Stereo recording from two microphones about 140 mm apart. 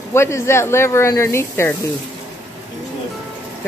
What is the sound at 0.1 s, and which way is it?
Speech, 20° left (ahead or behind).